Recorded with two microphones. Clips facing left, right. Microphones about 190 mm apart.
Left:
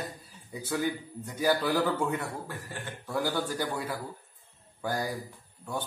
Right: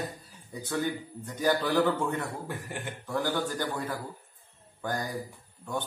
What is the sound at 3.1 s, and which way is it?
Speech, 5° left (ahead or behind).